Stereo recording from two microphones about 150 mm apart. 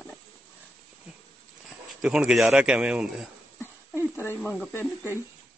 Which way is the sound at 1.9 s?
5° right (ahead or behind).